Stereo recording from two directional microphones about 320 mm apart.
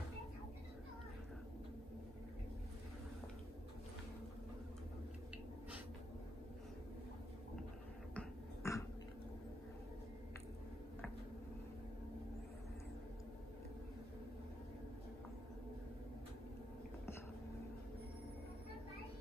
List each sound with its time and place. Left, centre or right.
8.1 s beatboxing: centre